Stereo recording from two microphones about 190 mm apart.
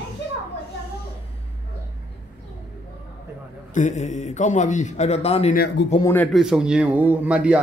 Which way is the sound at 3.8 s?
40° left (ahead or behind).